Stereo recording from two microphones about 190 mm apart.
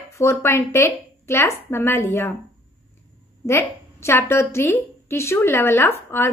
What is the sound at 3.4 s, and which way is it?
A woman's voice, 15° left (ahead or behind).